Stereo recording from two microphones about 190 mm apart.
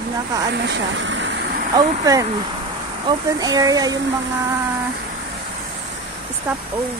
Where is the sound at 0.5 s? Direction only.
70° right (ahead or behind).